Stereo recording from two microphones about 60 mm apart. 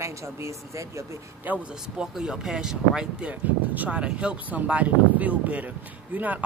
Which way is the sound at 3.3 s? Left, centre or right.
Right.